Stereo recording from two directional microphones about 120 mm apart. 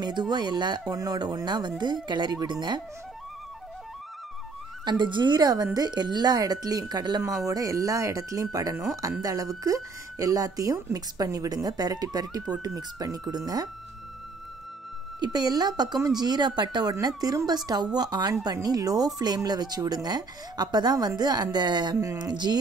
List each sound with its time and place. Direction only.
0.0 s speech: 35° right (ahead or behind)
4.8 s speech: 40° right (ahead or behind)
15.1 s speech: 35° right (ahead or behind)